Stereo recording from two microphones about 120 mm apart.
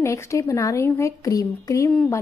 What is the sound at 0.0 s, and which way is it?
A woman's voice, 25° left (ahead or behind).